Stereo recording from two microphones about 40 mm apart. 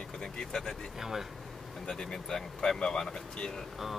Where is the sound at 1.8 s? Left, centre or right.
Centre.